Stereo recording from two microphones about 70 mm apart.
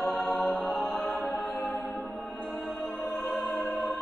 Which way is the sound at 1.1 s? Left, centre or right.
Left.